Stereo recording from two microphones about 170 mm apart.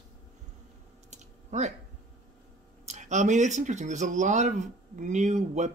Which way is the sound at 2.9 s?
45° right (ahead or behind).